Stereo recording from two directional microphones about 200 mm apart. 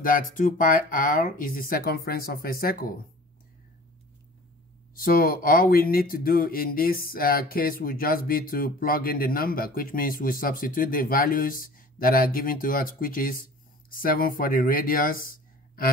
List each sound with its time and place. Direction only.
0.0 s speech: 40° left (ahead or behind)
4.9 s speech: 45° left (ahead or behind)